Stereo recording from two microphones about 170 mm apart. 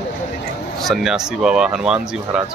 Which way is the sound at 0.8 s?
Centre (ahead or behind).